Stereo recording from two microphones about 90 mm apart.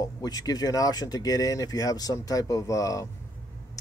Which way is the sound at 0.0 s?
45° left (ahead or behind).